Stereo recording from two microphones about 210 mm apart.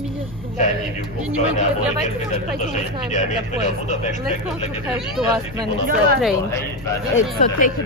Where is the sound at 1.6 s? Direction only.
35° left (ahead or behind).